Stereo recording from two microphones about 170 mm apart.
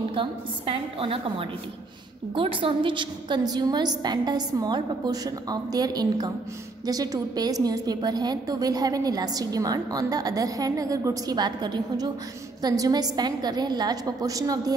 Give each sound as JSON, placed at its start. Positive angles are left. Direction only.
{"t": 0.1, "sound": "a woman's voice", "side_deg": -30}